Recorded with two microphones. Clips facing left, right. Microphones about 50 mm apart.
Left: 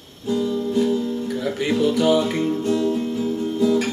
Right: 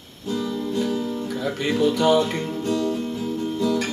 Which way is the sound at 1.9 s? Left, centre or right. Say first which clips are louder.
Left 1 dB; centre.